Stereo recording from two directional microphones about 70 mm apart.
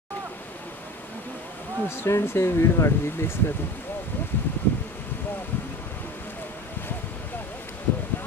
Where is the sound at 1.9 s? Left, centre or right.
Left.